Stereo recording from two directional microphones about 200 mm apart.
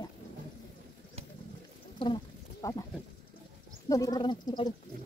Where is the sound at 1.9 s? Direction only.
25° left (ahead or behind).